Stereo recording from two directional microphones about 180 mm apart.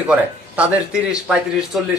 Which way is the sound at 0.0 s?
5° right (ahead or behind).